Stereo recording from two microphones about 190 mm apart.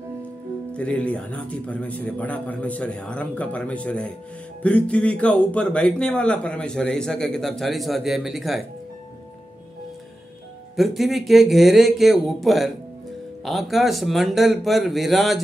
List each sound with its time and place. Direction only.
0.7 s a man's voice: 5° left (ahead or behind)
10.8 s a man's voice: centre (ahead or behind)